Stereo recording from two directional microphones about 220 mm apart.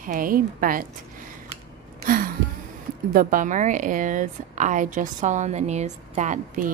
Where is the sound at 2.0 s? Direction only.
40° right (ahead or behind).